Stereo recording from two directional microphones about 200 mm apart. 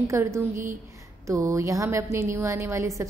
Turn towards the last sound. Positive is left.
turn(degrees=-15)  # may be behind; listen again after turning